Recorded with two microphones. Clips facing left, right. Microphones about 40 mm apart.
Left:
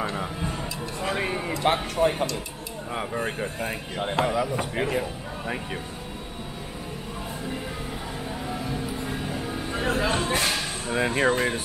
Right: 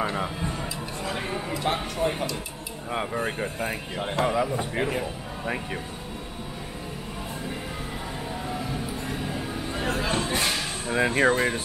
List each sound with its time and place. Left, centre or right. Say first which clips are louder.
0.0 s speech: right 2 dB; centre
0.4 s a sound: even; centre
1.1 s a sound: left 4 dB; centre
1.6 s speech: left 5 dB; left
2.9 s a man's voice: right 1 dB; centre
8.5 s music: left 2 dB; centre